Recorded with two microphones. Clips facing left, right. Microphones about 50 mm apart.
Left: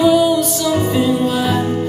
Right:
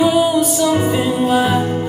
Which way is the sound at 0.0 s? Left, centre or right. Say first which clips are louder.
Left 1 dB; centre.